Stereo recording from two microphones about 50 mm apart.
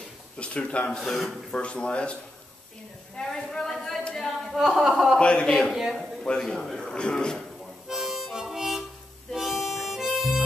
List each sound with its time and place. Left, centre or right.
0.4 s speech: left
0.9 s speech: centre
1.5 s speech: left
3.2 s a sound: centre
4.0 s singing: centre
4.5 s speech: centre
5.2 s speech: left
5.7 s speech: centre
6.2 s speech: centre
7.9 s music: centre
9.3 s harmonica: centre